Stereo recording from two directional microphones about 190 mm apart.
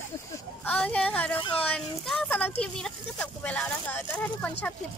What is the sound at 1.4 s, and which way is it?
Speech, 30° left (ahead or behind).